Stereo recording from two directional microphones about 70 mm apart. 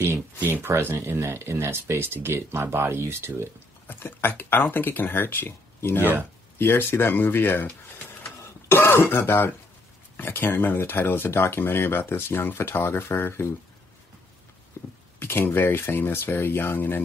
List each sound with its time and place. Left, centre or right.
0.0 s speech: right
3.8 s speech: left
14.8 s a sound: left
15.1 s speech: left